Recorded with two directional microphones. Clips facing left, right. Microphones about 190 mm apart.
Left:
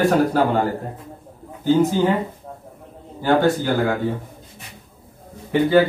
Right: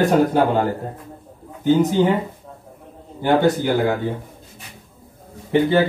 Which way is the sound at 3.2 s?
20° right (ahead or behind).